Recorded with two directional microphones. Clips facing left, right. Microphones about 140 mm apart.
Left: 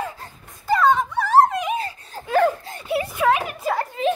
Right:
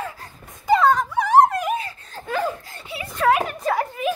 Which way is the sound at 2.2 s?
10° left (ahead or behind).